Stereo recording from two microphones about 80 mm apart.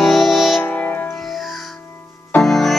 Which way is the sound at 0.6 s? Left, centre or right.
Centre.